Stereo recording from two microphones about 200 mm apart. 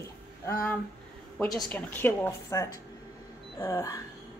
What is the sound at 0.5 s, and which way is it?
A woman's voice, 15° left (ahead or behind).